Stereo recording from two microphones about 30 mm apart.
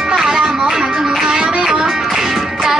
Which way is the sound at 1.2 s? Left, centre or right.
Right.